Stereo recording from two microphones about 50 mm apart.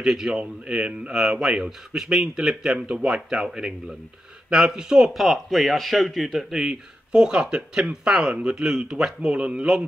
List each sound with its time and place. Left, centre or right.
0.0 s speech: centre
1.1 s a man's voice: centre
6.6 s speech: centre